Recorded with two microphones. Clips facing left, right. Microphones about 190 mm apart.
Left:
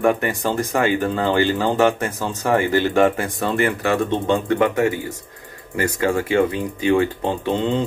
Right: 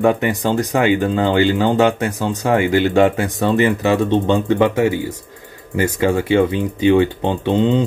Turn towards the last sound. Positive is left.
turn(degrees=-20)  # may be behind; listen again after turning